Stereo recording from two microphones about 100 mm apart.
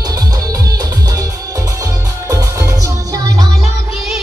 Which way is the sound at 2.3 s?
35° right (ahead or behind).